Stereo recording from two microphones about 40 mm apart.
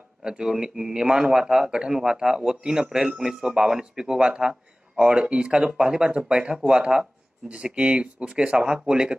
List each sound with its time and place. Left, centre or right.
0.2 s speech: right
6.6 s speech: right